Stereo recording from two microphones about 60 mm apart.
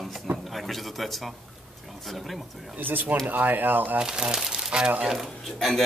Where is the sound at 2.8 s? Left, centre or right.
Right.